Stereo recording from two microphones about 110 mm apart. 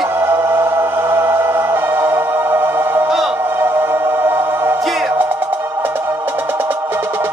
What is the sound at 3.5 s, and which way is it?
Music, 20° right (ahead or behind).